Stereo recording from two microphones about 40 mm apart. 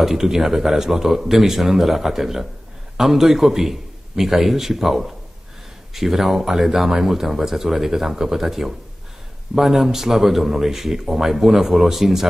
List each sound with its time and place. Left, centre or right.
0.0 s speech: centre